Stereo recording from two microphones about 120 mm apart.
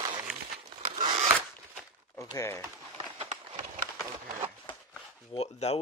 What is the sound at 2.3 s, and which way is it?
Speech, 25° left (ahead or behind).